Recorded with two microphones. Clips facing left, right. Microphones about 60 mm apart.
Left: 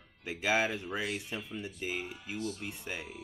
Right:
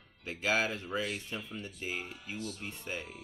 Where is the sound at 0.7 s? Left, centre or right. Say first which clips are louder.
Even; centre.